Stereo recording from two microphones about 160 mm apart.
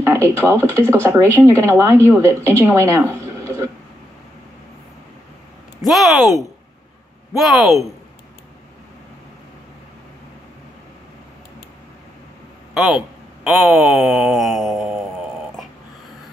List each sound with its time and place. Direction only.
0.0 s a woman's voice: 15° right (ahead or behind)
5.8 s speech: centre (ahead or behind)
12.7 s speech: centre (ahead or behind)